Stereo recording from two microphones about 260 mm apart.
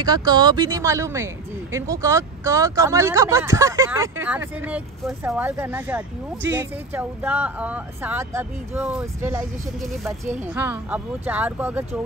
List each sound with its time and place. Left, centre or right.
0.0 s speech: centre
10.2 s speech: right
10.5 s speech: centre